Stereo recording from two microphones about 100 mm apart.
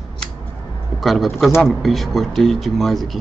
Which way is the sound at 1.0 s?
Centre (ahead or behind).